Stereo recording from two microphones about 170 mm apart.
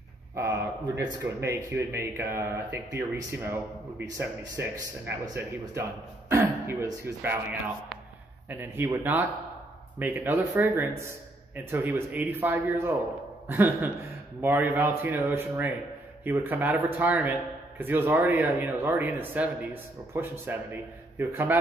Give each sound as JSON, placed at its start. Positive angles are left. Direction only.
{"t": 0.4, "sound": "speech", "side_deg": -15}
{"t": 8.5, "sound": "speech", "side_deg": -10}